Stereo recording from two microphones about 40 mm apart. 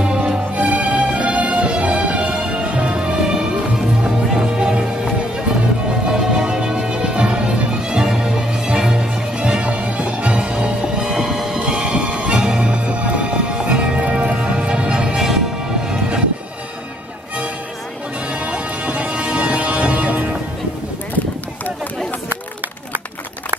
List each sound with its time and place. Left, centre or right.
0.0 s music: right
0.6 s music: right
6.0 s music: right
8.1 s music: centre
8.8 s music: right
11.1 s music: centre; by 15.1 s right
15.1 s music: centre
18.3 s music: right